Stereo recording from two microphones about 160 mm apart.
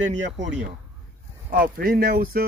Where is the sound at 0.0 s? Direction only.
50° right (ahead or behind).